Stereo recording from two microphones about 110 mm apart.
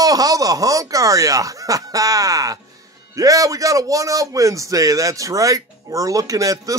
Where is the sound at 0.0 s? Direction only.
35° right (ahead or behind).